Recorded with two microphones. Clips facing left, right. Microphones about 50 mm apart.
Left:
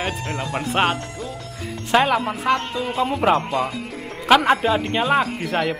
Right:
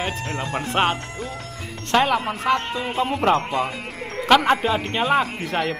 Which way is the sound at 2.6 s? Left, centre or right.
Centre.